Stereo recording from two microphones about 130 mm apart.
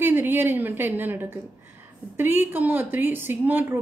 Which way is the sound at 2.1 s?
15° right (ahead or behind).